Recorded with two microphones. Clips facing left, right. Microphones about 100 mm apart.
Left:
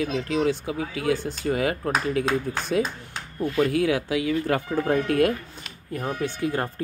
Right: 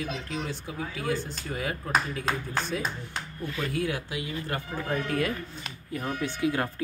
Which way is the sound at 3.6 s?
75° left (ahead or behind).